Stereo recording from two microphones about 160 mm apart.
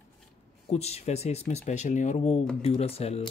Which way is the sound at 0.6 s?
40° left (ahead or behind).